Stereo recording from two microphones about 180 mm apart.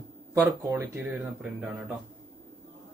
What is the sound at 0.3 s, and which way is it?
Speech, 15° right (ahead or behind).